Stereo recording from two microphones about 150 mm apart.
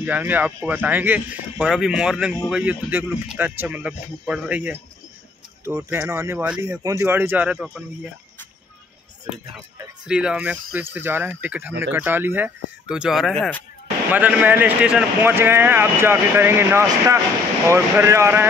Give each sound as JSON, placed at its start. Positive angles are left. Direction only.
{"t": 0.0, "sound": "speech", "side_deg": -10}
{"t": 5.8, "sound": "speech", "side_deg": -15}
{"t": 10.0, "sound": "speech", "side_deg": -5}